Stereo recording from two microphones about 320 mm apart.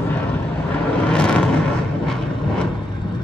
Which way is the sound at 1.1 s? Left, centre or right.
Centre.